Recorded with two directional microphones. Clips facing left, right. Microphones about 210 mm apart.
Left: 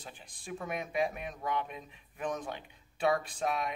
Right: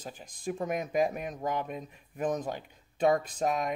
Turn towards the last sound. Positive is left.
turn(degrees=-40)  # may be behind; listen again after turning